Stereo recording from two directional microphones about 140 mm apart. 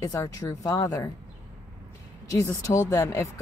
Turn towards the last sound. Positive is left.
turn(degrees=20)  # may be behind; listen again after turning